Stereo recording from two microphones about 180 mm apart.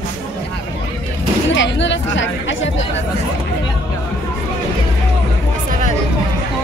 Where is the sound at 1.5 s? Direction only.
80° left.